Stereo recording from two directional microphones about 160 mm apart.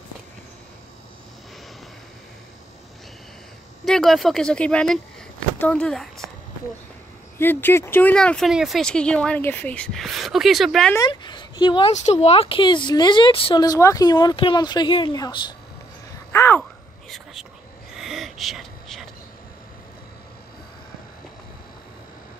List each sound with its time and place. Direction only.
3.8 s speech: centre (ahead or behind)
7.3 s speech: 15° left (ahead or behind)
11.0 s a woman's voice: 30° left (ahead or behind)
11.9 s speech: 45° left (ahead or behind)
13.7 s speech: 20° left (ahead or behind)
16.3 s a sound: 15° left (ahead or behind)
17.1 s a sound: centre (ahead or behind)